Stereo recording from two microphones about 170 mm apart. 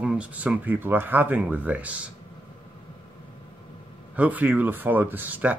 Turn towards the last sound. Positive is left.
turn(degrees=-10)  # may be behind; listen again after turning